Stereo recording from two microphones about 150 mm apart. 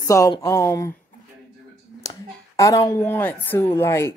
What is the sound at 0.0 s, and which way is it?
Speech, 20° left (ahead or behind).